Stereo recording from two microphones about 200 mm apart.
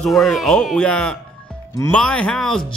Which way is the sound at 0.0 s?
Centre (ahead or behind).